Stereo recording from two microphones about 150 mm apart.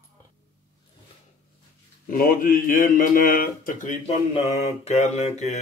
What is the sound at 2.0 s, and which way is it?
Speech, 70° left (ahead or behind).